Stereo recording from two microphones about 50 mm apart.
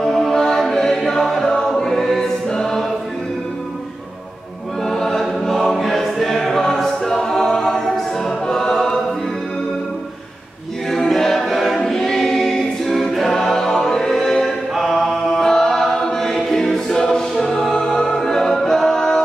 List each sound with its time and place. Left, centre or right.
0.0 s a capella: centre
4.8 s choir: centre
10.9 s choir: centre